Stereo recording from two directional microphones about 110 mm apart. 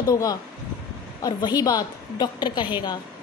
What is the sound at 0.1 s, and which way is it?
A woman's voice, 35° left (ahead or behind).